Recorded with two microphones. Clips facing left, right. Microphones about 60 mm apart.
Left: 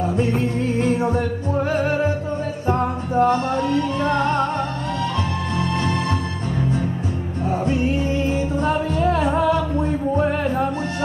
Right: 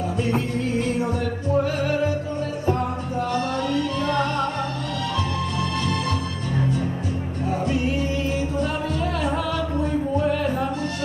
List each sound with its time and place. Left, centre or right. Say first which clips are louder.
0.6 s music: left 3 dB; left
7.6 s music: left 3 dB; left